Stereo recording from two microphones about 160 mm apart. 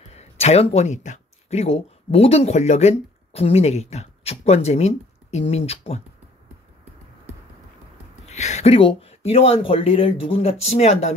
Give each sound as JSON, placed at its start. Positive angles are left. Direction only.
{"t": 0.1, "sound": "speech", "side_deg": 40}
{"t": 8.3, "sound": "speech", "side_deg": 45}